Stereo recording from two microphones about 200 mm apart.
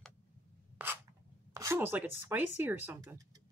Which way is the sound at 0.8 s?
10° right (ahead or behind).